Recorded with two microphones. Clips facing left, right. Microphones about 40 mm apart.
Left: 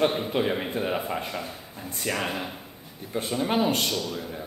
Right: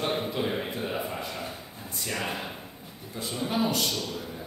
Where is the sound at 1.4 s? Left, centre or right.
Centre.